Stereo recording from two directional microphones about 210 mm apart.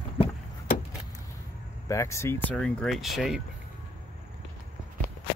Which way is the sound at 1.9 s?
15° left (ahead or behind).